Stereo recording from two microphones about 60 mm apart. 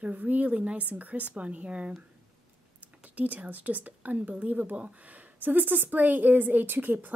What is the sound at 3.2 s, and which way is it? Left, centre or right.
A woman's voice, right.